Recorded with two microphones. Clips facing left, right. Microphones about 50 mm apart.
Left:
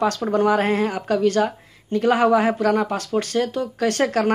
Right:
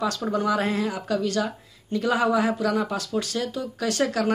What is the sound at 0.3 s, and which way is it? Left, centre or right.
A woman's voice, left.